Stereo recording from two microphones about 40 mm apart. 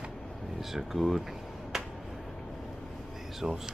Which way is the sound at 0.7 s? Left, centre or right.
Centre.